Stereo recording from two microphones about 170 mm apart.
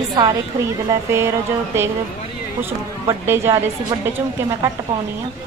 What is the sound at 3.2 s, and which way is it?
Speech, 15° right (ahead or behind).